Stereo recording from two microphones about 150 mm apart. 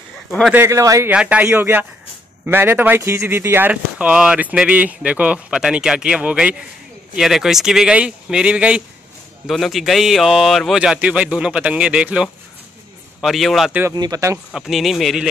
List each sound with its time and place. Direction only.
0.5 s speech: 15° right (ahead or behind)
1.1 s a man's voice: 5° right (ahead or behind)
13.9 s speech: 25° right (ahead or behind)
14.5 s a man's voice: centre (ahead or behind)